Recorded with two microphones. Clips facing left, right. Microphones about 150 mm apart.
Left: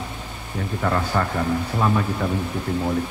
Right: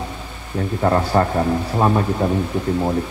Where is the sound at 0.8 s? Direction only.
35° right (ahead or behind).